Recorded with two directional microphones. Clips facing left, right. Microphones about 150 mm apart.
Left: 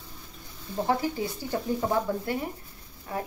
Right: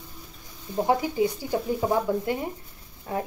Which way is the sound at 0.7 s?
15° right (ahead or behind).